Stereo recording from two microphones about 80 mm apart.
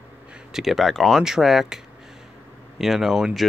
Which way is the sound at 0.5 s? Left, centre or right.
Centre.